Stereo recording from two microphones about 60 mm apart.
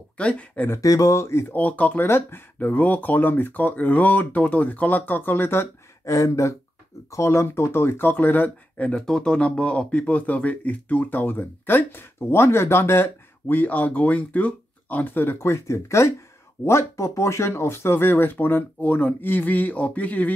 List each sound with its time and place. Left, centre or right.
0.2 s speech: left
0.7 s speech: left
1.5 s speech: left
2.0 s speech: left
2.6 s speech: left
6.1 s speech: left
9.0 s speech: centre; by 13.1 s left
13.5 s speech: left
15.4 s speech: left